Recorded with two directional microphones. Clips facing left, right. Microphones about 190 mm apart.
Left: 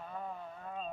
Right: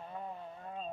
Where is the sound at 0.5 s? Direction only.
30° right (ahead or behind).